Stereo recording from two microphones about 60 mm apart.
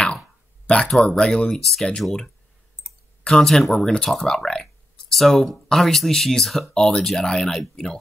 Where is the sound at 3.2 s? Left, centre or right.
Centre.